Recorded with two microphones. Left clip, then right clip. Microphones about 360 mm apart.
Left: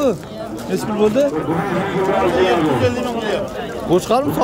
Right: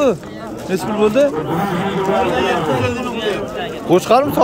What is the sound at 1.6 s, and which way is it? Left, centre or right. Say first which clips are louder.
A man's voice: even; centre.